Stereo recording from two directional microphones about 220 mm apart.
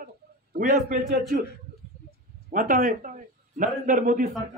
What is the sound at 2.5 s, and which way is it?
A man's voice, 40° right (ahead or behind).